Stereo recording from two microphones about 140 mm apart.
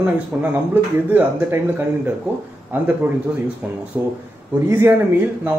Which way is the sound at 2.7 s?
10° right (ahead or behind).